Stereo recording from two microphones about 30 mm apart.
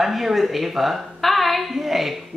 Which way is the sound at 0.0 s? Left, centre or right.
Centre.